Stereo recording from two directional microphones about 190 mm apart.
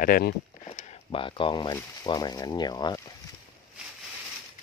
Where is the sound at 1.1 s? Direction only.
25° left (ahead or behind).